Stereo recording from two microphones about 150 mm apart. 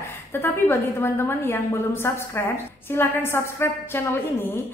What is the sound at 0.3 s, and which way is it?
A woman's voice, 15° left (ahead or behind).